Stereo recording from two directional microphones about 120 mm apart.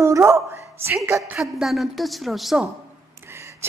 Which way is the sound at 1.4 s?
Centre (ahead or behind).